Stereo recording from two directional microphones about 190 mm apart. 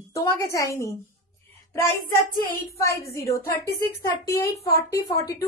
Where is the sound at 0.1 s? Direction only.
15° left (ahead or behind).